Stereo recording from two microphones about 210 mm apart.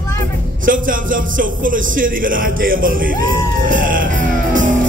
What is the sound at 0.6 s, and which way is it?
Music, 40° right (ahead or behind).